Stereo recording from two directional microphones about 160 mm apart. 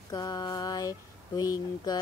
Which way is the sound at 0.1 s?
25° left (ahead or behind).